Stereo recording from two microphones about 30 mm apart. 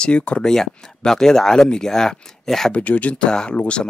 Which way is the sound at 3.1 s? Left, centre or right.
Left.